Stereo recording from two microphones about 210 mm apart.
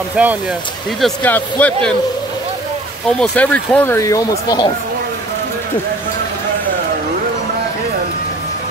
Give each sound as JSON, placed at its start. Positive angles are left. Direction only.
{"t": 0.1, "sound": "speech", "side_deg": -5}
{"t": 1.0, "sound": "speech", "side_deg": 5}
{"t": 3.2, "sound": "speech", "side_deg": 5}